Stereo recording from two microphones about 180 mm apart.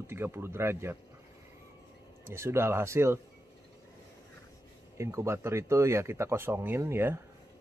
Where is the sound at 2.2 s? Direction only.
15° right (ahead or behind).